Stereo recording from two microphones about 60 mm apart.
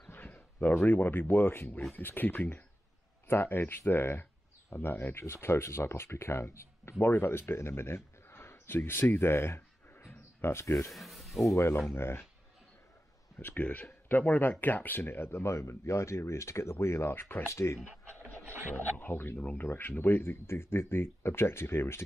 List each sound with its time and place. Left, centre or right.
0.1 s speech: left
7.1 s speech: left
9.1 s a sound: left
10.4 s speech: left
10.9 s speech: centre
11.5 s speech: left
13.4 s speech: left
18.9 s speech: left